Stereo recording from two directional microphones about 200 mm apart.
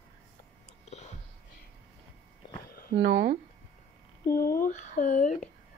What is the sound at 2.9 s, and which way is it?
Speech, 55° right (ahead or behind).